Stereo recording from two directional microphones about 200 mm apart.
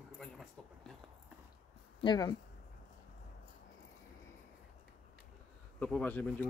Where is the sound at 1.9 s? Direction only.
20° left (ahead or behind).